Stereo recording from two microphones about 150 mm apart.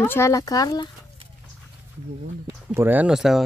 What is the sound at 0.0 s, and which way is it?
Speech, 15° left (ahead or behind).